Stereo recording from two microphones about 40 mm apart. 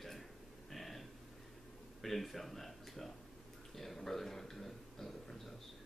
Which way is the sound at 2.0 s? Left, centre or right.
Centre.